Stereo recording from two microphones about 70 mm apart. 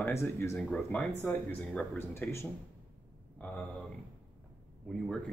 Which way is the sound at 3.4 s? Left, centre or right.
Centre.